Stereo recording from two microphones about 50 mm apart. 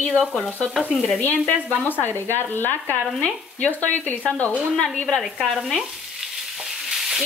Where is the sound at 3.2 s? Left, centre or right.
Left.